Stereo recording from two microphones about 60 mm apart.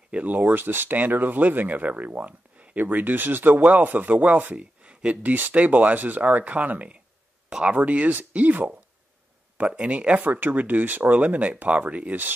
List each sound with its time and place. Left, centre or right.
0.1 s speech: right
10.2 s speech: right